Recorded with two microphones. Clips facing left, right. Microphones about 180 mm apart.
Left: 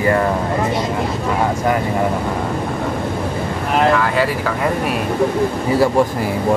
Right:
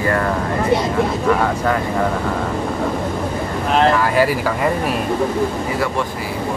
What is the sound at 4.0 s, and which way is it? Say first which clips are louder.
Speech: right 1 dB; 5° right (ahead or behind).